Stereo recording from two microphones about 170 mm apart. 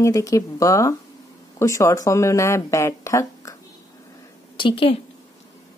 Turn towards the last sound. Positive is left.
turn(degrees=30)  # may be behind; listen again after turning